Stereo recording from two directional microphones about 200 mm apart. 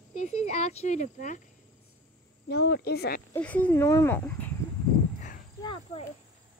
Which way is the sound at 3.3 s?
5° left (ahead or behind).